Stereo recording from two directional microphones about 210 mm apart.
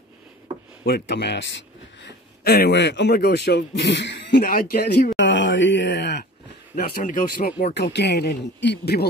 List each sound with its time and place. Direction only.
0.8 s speech: 50° left (ahead or behind)
5.1 s speech: 60° left (ahead or behind)
6.7 s speech: 40° left (ahead or behind)